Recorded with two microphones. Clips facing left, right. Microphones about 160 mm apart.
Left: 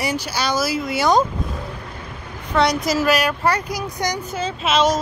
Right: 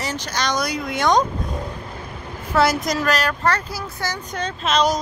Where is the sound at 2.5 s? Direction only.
Centre (ahead or behind); by 4.1 s 15° left (ahead or behind).